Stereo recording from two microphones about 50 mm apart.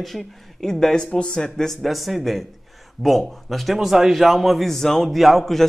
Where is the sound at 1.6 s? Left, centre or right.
Centre.